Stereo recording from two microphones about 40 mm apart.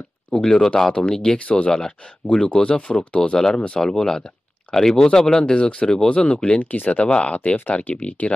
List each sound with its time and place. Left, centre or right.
0.3 s speech: centre
1.4 s speech: left
1.7 s speech: centre
5.4 s speech: left
6.6 s speech: left
7.1 s speech: left
7.3 s speech: left